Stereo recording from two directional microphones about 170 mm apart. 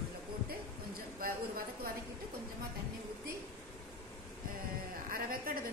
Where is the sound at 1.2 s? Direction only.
60° right (ahead or behind).